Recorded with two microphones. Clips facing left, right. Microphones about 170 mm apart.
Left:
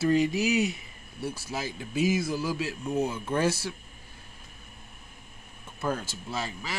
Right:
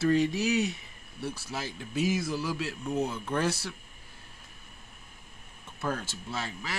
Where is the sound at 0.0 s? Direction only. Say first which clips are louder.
Left 1 dB; 5° left (ahead or behind).